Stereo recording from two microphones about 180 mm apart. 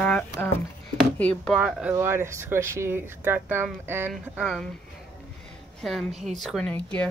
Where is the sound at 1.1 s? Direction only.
10° left (ahead or behind).